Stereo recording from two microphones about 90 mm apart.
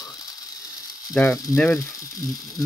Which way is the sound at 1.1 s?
15° left (ahead or behind).